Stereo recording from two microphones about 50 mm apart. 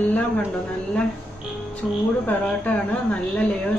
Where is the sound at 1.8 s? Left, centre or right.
Centre.